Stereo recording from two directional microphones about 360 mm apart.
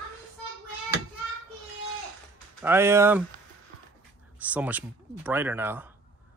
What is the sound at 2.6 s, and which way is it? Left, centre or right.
Speech, centre.